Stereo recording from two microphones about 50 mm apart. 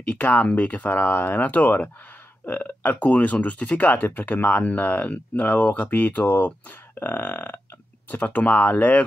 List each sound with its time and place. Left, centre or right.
0.1 s speech: left